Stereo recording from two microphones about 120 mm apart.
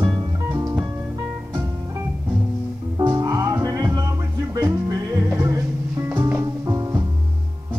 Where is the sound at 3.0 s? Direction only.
25° right (ahead or behind).